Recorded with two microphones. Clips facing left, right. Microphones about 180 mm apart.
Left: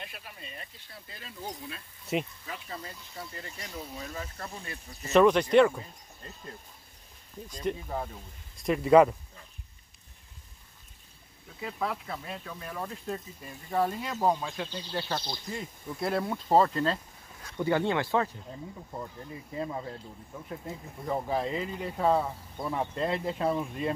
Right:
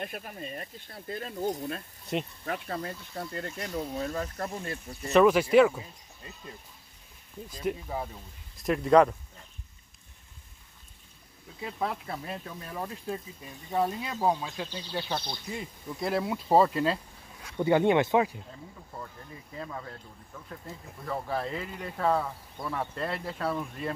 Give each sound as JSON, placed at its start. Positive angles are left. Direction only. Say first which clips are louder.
{"t": 0.0, "sound": "speech", "louder": "right 8 dB", "side_deg": -45}
{"t": 2.1, "sound": "speech", "louder": "left 1 dB", "side_deg": 5}
{"t": 2.4, "sound": "speech", "louder": "right 7 dB", "side_deg": -55}
{"t": 5.0, "sound": "speech", "louder": "even", "side_deg": 0}
{"t": 7.4, "sound": "speech", "louder": "even", "side_deg": -5}
{"t": 11.6, "sound": "speech", "louder": "right 1 dB", "side_deg": -25}
{"t": 12.7, "sound": "speech", "louder": "right 1 dB", "side_deg": -10}
{"t": 17.6, "sound": "speech", "louder": "right 4 dB", "side_deg": -20}
{"t": 18.9, "sound": "speech", "louder": "left 3 dB", "side_deg": 20}